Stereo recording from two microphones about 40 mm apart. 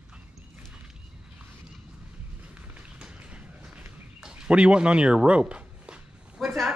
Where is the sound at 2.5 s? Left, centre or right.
Right.